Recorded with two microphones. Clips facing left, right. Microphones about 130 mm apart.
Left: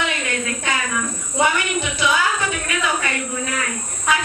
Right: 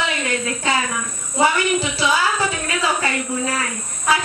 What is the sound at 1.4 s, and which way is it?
Speech, 30° right (ahead or behind).